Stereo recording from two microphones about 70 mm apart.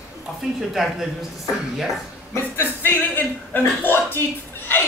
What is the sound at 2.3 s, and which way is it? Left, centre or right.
A man's voice, left.